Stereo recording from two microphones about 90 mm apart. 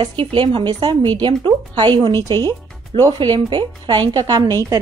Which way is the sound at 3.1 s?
55° right (ahead or behind).